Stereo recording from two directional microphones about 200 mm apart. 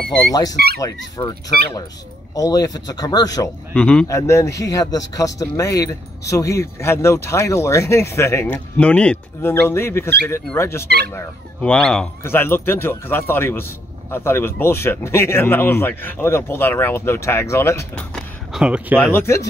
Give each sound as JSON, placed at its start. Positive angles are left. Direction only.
{"t": 0.3, "sound": "a man's voice", "side_deg": 20}
{"t": 3.7, "sound": "a man's voice", "side_deg": 5}
{"t": 18.9, "sound": "a man's voice", "side_deg": 10}